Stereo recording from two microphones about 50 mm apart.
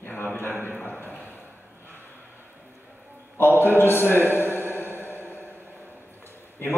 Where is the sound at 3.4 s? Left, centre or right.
Left.